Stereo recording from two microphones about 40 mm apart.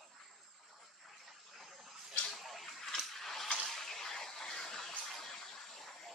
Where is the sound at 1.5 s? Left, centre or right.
Centre.